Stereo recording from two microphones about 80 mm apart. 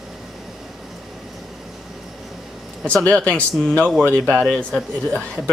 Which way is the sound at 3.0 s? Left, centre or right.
Centre.